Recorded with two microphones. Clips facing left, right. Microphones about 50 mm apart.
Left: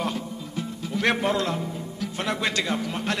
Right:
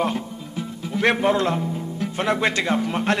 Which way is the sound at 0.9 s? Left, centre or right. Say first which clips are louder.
Right 4 dB; right.